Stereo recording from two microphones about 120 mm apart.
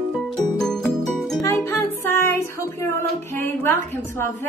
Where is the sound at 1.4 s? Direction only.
25° left (ahead or behind).